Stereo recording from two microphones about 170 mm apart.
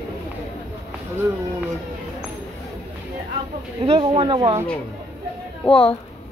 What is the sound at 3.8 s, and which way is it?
Speech, 30° right (ahead or behind).